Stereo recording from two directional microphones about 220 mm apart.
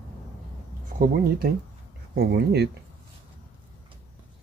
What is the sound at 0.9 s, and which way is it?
Speech, 40° right (ahead or behind).